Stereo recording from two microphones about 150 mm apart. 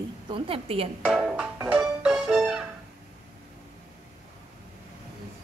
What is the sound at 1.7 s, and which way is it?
Music, centre (ahead or behind).